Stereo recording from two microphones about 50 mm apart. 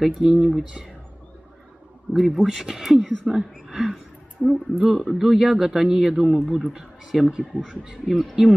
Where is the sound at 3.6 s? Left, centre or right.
Centre.